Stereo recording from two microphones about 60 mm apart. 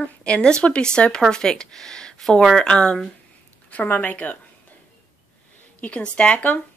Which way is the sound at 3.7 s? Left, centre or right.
Left.